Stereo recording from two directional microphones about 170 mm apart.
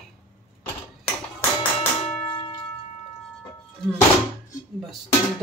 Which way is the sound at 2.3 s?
30° left (ahead or behind).